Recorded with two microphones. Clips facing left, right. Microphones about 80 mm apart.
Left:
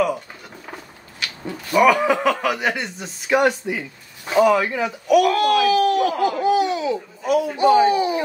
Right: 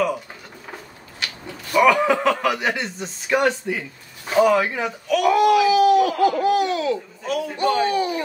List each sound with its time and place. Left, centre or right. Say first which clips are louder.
1.7 s speech: left 1 dB; centre
3.3 s speech: left 2 dB; centre
4.4 s speech: left 1 dB; centre
5.2 s speech: right 1 dB; centre